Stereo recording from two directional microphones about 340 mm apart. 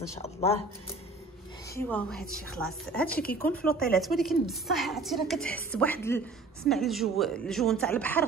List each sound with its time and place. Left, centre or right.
0.2 s speech: centre
1.8 s a woman's voice: centre